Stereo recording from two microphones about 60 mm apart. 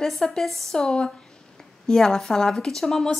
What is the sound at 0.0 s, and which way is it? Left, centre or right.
Speech, centre.